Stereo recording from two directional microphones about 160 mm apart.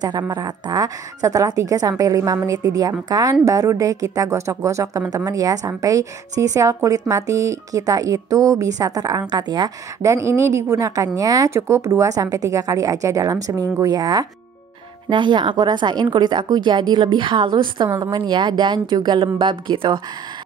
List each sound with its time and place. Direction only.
0.3 s a woman's voice: 25° right (ahead or behind)